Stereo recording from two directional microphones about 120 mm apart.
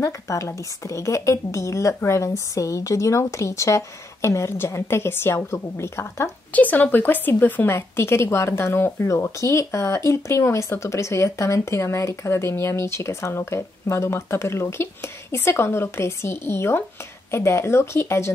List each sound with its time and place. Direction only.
0.0 s a woman's voice: 25° left (ahead or behind)